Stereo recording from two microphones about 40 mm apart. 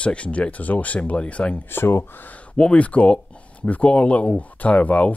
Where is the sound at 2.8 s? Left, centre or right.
Left.